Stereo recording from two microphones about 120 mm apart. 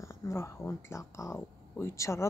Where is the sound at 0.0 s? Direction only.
20° left (ahead or behind).